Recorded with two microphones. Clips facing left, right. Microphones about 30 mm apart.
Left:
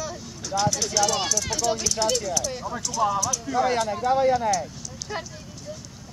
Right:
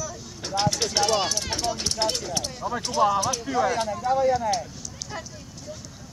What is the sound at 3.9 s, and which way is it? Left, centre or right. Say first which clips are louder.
Speech: left 2 dB; left.